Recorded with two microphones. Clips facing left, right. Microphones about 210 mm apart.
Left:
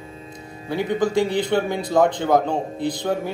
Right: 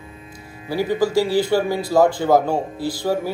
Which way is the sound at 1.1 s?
20° left (ahead or behind).